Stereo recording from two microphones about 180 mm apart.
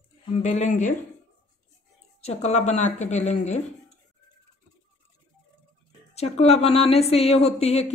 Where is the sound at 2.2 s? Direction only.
40° left (ahead or behind).